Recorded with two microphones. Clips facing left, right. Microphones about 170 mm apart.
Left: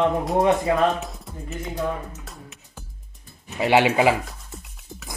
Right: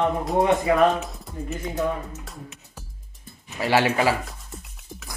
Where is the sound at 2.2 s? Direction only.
Centre (ahead or behind).